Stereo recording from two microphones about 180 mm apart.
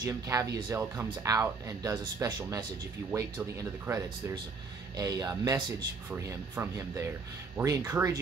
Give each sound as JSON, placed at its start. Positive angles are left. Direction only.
{"t": 0.0, "sound": "speech", "side_deg": -20}